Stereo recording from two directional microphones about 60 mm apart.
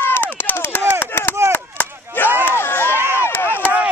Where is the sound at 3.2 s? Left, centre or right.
Left.